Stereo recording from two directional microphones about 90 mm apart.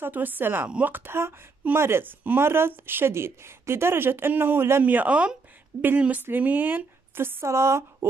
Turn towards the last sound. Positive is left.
turn(degrees=-30)  # may be behind; listen again after turning